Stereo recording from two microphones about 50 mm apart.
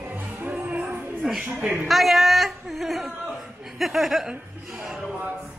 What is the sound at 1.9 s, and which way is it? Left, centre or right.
Speech, centre.